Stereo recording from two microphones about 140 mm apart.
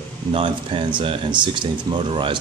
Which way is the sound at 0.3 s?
40° right (ahead or behind).